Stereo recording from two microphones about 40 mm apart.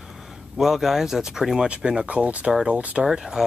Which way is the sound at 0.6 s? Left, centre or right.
Centre.